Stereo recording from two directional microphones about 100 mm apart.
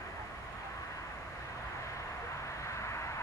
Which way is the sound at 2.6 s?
30° left (ahead or behind).